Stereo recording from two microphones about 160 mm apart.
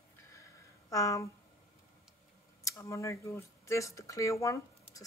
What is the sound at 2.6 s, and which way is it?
Speech, 20° left (ahead or behind).